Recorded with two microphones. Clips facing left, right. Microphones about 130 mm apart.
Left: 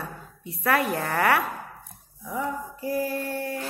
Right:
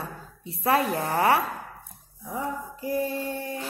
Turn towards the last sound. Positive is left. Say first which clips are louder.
# left 1 dB
turn(degrees=-20)  # may be behind; listen again after turning